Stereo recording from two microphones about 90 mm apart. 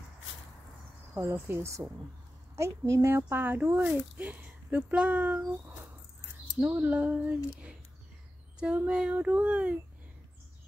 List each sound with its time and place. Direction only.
1.1 s speech: 25° right (ahead or behind)
6.8 s speech: 15° right (ahead or behind)